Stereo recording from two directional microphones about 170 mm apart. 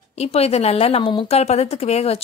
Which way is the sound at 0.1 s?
35° left (ahead or behind).